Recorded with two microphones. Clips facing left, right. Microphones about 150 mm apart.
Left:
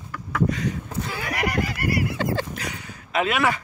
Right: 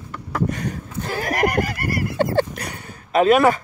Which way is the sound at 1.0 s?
45° right (ahead or behind).